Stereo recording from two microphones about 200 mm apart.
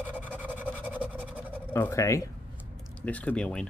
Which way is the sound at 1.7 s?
10° left (ahead or behind).